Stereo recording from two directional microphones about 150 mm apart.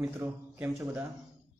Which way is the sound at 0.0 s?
15° right (ahead or behind).